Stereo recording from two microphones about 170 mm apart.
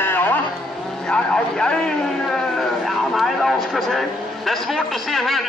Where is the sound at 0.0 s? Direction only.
10° left (ahead or behind).